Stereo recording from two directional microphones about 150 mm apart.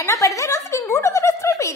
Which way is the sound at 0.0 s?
20° left (ahead or behind).